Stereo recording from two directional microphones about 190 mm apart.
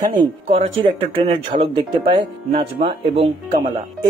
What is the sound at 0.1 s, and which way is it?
Speech, 25° right (ahead or behind).